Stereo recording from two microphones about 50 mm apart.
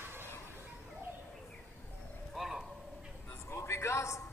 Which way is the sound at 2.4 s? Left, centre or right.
Centre.